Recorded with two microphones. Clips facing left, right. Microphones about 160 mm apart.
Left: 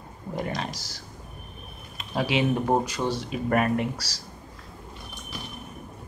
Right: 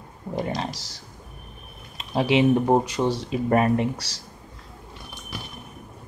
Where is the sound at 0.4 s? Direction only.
30° right (ahead or behind).